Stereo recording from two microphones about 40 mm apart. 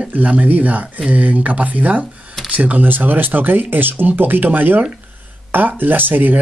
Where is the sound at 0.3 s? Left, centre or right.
Right.